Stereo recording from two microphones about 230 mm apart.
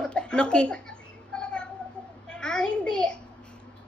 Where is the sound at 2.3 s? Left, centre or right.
Centre.